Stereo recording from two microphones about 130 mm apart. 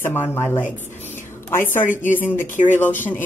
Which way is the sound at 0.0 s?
15° left (ahead or behind).